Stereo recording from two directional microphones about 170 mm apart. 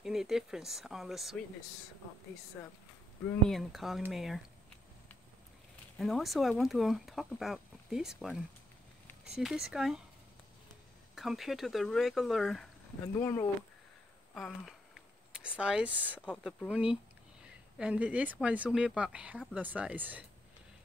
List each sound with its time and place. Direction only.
0.0 s speech: centre (ahead or behind)
2.6 s speech: 10° left (ahead or behind)
3.4 s speech: centre (ahead or behind)
5.9 s speech: centre (ahead or behind)
11.1 s speech: centre (ahead or behind)
13.0 s speech: 15° left (ahead or behind)
14.3 s speech: centre (ahead or behind)